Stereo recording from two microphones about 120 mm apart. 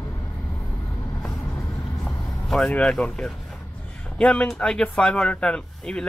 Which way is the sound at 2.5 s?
5° left (ahead or behind).